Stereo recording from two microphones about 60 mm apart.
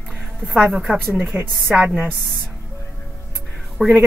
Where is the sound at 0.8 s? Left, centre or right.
Centre.